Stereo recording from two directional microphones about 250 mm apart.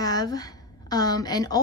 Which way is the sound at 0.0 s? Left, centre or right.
Centre.